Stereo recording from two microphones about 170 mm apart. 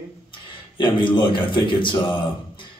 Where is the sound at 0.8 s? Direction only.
30° left (ahead or behind).